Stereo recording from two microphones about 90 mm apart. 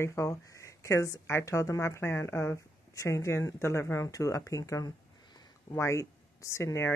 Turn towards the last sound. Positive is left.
turn(degrees=30)  # may be behind; listen again after turning